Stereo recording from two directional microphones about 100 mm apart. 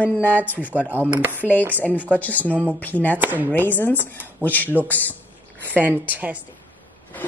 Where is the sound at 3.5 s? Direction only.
20° left (ahead or behind).